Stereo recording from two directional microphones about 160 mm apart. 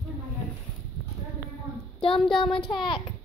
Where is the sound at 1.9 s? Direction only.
35° left (ahead or behind).